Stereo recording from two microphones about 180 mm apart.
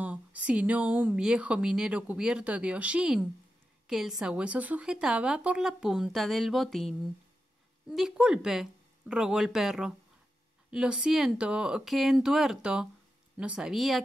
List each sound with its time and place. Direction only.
0.0 s speech: 10° right (ahead or behind)